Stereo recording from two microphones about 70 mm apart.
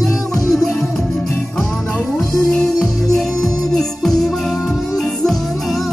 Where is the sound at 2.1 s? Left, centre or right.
Centre.